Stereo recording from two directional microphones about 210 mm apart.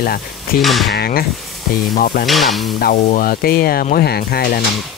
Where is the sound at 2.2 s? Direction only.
Centre (ahead or behind).